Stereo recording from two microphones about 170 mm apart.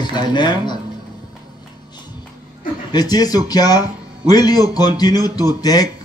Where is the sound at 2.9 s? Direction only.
25° left (ahead or behind).